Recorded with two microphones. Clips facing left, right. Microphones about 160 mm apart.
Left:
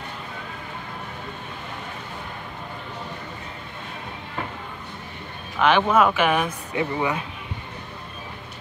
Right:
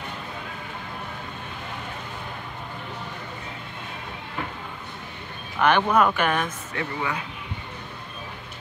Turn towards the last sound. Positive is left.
turn(degrees=20)  # may be behind; listen again after turning